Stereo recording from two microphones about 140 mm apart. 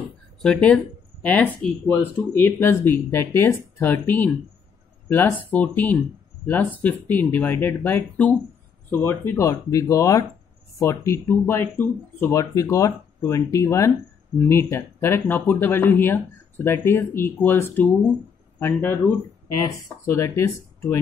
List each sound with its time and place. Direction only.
0.4 s speech: 10° left (ahead or behind)
20.1 s speech: 20° left (ahead or behind)